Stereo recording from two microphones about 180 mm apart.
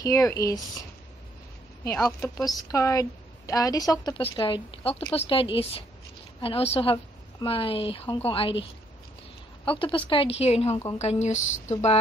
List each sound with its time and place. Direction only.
0.0 s speech: 15° left (ahead or behind)
2.0 s a woman's voice: 20° left (ahead or behind)
9.7 s a woman's voice: 30° left (ahead or behind)